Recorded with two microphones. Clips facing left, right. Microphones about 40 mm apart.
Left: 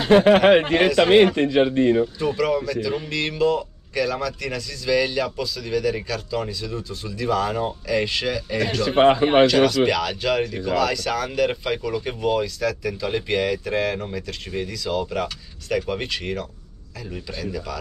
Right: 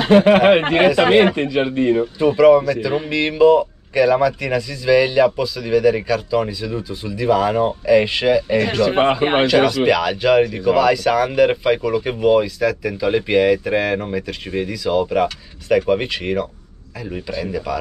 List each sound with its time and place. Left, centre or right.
0.4 s speech: right
0.8 s speech: right
1.2 s speech: right
2.1 s speech: right
8.5 s speech: right
9.5 s speech: centre